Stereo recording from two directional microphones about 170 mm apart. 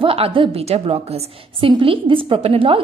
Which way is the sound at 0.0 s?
35° right (ahead or behind).